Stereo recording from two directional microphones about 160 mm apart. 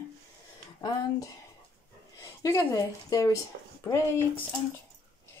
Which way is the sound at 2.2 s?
20° left (ahead or behind).